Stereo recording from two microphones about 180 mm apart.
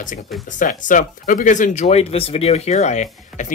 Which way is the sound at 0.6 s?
45° left (ahead or behind).